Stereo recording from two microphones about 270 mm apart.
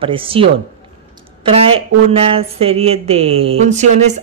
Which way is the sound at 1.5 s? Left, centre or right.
Right.